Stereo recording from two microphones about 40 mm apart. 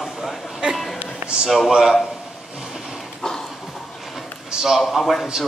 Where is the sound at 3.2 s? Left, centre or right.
Centre.